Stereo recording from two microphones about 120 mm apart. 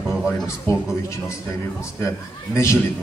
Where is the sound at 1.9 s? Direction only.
25° left (ahead or behind).